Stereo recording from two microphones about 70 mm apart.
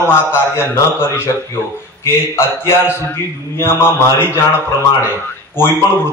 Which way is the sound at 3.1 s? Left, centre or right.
Left.